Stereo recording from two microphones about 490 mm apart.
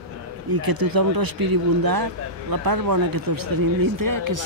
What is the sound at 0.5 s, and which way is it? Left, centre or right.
A man's voice, right.